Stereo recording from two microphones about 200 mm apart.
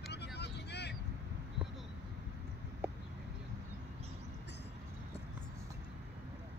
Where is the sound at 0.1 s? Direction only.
55° left (ahead or behind).